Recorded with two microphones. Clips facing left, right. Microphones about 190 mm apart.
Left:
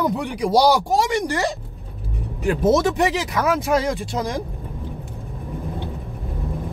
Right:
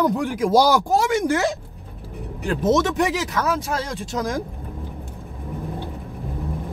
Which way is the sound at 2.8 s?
Centre (ahead or behind).